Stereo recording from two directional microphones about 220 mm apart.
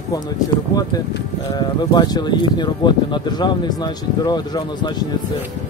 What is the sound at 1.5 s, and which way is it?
Speech, 20° left (ahead or behind).